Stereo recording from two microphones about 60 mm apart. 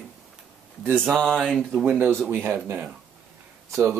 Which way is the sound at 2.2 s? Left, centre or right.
Right.